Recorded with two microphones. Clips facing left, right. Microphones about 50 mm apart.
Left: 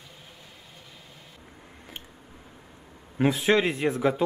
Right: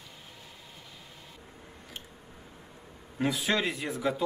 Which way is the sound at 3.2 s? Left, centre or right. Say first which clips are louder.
Left 6 dB; left.